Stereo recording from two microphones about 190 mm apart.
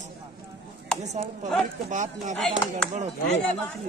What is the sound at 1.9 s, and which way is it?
Speech, 40° right (ahead or behind).